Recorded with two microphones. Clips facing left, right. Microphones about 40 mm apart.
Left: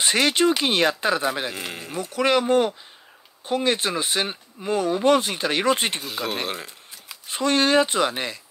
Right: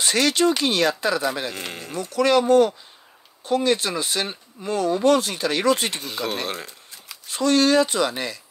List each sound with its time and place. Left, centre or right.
0.0 s speech: left
1.5 s speech: centre
2.0 s speech: left
5.9 s speech: centre
6.4 s a sound: centre
7.2 s speech: left